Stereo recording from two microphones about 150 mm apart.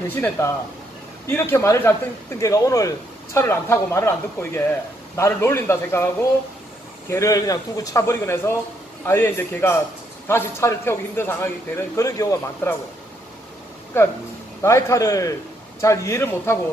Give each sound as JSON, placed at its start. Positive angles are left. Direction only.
{"t": 0.1, "sound": "a man's voice", "side_deg": 15}
{"t": 14.6, "sound": "a man's voice", "side_deg": 20}